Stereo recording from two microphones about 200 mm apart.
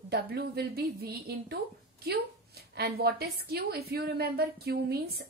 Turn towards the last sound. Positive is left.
turn(degrees=-50)  # may be behind; listen again after turning